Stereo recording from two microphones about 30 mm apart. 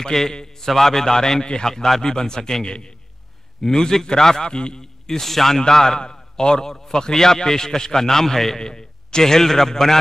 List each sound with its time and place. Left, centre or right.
0.0 s a man's voice: centre
3.6 s a man's voice: centre
5.2 s a man's voice: centre
5.6 s a man's voice: centre